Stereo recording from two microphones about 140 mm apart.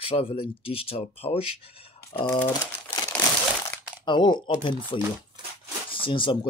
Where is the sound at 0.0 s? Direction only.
40° left (ahead or behind).